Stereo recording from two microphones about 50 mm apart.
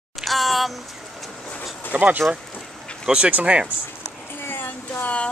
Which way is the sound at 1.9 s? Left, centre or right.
Right.